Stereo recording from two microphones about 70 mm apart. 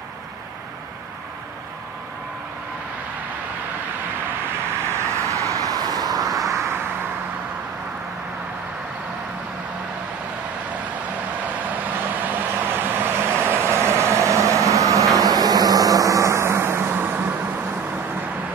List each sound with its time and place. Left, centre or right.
4.8 s vehicle: right
11.4 s vehicle: right